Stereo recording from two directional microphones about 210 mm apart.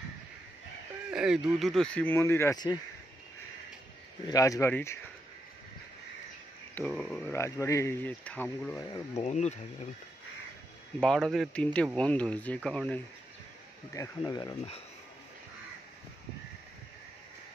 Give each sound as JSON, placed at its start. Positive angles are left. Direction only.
{"t": 1.1, "sound": "a sound", "side_deg": -5}
{"t": 1.5, "sound": "speech", "side_deg": 0}
{"t": 4.3, "sound": "speech", "side_deg": 15}
{"t": 6.7, "sound": "speech", "side_deg": 5}
{"t": 9.1, "sound": "speech", "side_deg": 35}
{"t": 11.0, "sound": "speech", "side_deg": 0}
{"t": 13.9, "sound": "speech", "side_deg": 15}